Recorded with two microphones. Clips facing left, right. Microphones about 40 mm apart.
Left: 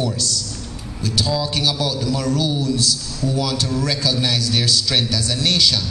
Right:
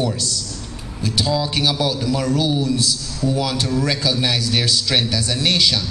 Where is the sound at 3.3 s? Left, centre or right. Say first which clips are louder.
Right 1 dB; centre.